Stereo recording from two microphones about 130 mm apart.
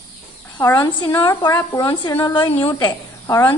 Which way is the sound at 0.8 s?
35° left (ahead or behind).